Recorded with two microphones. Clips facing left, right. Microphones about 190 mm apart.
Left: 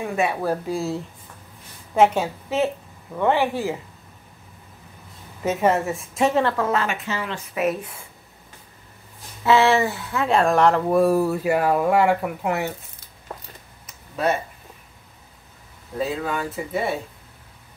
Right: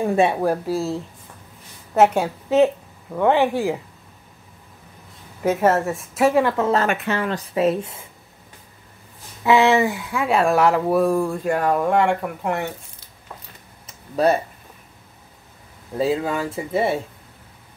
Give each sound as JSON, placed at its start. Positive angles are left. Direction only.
{"t": 0.0, "sound": "a woman's voice", "side_deg": -30}
{"t": 0.4, "sound": "a woman's voice", "side_deg": -15}
{"t": 2.0, "sound": "a woman's voice", "side_deg": -10}
{"t": 5.4, "sound": "a woman's voice", "side_deg": -10}
{"t": 6.9, "sound": "speech", "side_deg": -55}
{"t": 7.2, "sound": "speech", "side_deg": -35}
{"t": 9.4, "sound": "speech", "side_deg": -15}
{"t": 14.1, "sound": "speech", "side_deg": -35}
{"t": 16.0, "sound": "speech", "side_deg": -30}